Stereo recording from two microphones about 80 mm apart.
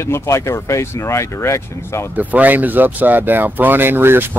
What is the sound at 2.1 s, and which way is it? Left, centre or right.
Speech, right.